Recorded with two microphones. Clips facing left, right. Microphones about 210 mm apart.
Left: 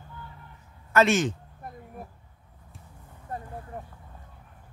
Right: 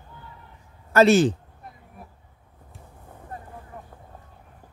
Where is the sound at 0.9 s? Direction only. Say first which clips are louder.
Right 6 dB; 35° right (ahead or behind).